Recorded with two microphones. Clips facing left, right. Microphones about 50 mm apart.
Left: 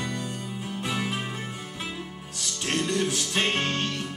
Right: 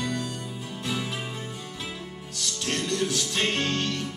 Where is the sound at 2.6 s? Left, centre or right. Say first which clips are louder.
Left 2 dB; left.